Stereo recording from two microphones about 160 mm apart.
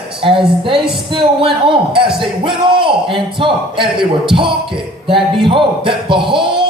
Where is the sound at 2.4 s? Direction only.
30° right (ahead or behind).